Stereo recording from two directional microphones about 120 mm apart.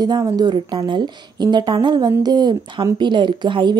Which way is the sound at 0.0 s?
35° right (ahead or behind).